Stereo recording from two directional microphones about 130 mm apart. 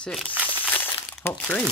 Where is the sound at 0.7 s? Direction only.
15° left (ahead or behind).